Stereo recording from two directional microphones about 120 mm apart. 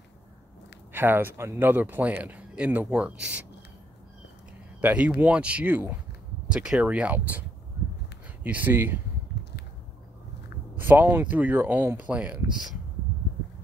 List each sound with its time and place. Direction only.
0.9 s speech: 15° right (ahead or behind)
4.8 s speech: 10° right (ahead or behind)
8.5 s speech: 15° right (ahead or behind)
10.8 s speech: 15° right (ahead or behind)